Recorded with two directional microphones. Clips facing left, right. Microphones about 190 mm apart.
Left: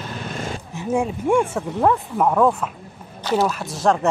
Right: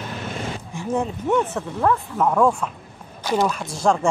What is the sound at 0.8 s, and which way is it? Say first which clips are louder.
Speech: left 2 dB; 10° left (ahead or behind).